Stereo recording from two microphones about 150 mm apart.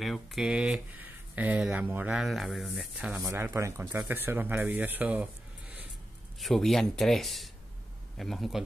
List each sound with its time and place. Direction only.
0.0 s speech: centre (ahead or behind)
6.4 s speech: centre (ahead or behind)